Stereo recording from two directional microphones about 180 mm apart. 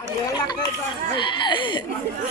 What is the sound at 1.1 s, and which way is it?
Speech, 25° left (ahead or behind).